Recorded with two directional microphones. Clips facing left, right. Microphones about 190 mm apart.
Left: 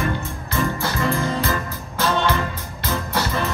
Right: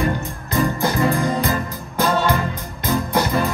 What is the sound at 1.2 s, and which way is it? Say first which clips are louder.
Music: right 2 dB; 15° right (ahead or behind).